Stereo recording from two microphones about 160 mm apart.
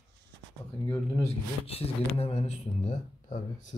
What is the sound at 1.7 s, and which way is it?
Speech, 40° left (ahead or behind).